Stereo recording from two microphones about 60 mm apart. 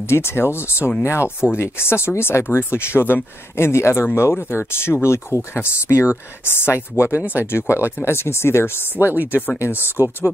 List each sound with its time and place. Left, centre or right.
0.0 s speech: left
9.0 s speech: right
9.6 s speech: left
9.9 s speech: right